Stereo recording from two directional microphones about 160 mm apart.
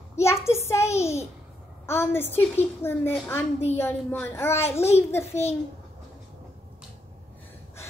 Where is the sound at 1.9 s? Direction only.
15° left (ahead or behind).